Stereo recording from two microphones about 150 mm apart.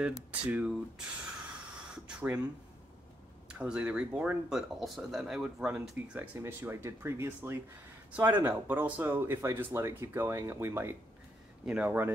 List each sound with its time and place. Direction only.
0.0 s speech: 10° right (ahead or behind)
2.0 s speech: 5° right (ahead or behind)
3.4 s speech: 5° right (ahead or behind)